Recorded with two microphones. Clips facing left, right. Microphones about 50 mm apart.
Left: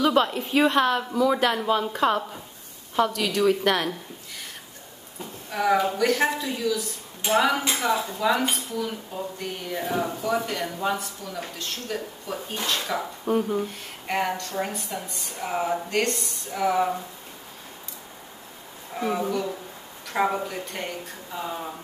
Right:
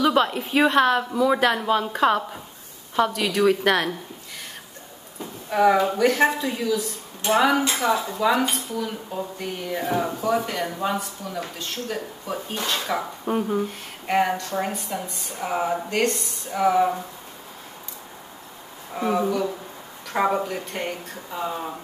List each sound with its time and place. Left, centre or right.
0.0 s speech: centre
5.5 s speech: centre
18.9 s a woman's voice: centre